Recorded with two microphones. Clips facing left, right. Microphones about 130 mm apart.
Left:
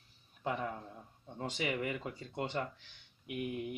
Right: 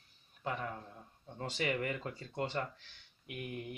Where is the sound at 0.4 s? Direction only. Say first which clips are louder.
Left 2 dB; 20° left (ahead or behind).